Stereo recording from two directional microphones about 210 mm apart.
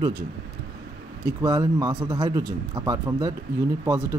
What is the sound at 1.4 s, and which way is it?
Speech, 15° right (ahead or behind).